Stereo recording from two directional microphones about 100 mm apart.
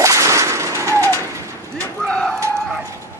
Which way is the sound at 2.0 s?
5° left (ahead or behind).